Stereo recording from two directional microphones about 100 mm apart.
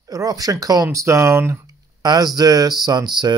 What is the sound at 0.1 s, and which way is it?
Speech, 35° right (ahead or behind).